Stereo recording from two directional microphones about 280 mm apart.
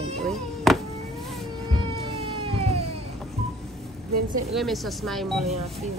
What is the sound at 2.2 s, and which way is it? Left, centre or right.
Cat, right.